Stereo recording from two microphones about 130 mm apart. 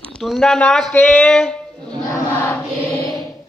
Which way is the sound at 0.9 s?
15° left (ahead or behind).